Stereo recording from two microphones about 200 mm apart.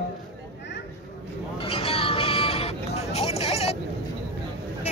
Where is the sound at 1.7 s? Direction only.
30° left (ahead or behind).